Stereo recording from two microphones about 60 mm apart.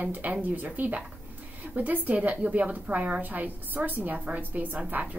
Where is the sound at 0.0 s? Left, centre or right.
Right.